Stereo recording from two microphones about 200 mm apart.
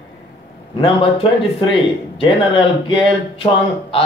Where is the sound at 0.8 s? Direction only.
25° left (ahead or behind).